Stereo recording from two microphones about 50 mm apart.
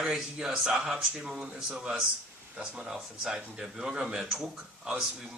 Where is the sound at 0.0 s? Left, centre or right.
Centre.